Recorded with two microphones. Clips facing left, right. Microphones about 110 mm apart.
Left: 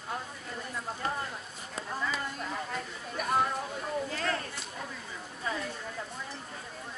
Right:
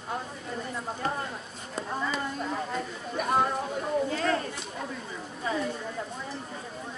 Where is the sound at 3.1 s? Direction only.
30° right (ahead or behind).